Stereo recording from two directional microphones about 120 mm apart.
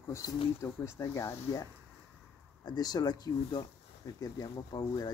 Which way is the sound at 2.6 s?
35° left (ahead or behind).